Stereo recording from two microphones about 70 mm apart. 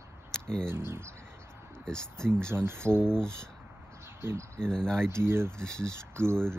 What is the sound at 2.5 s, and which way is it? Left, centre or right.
Speech, right.